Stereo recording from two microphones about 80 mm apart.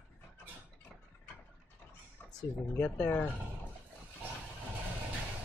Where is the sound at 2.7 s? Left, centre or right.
Centre.